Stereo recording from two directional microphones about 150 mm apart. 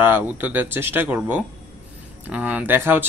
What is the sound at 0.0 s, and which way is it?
A man's voice, 15° right (ahead or behind).